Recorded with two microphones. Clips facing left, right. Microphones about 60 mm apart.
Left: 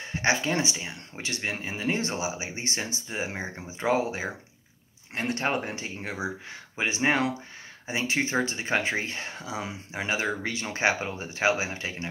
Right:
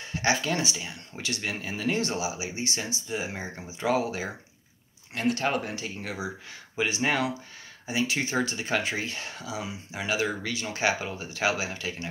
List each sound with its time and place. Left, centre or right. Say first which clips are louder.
0.1 s speech: left 1 dB; left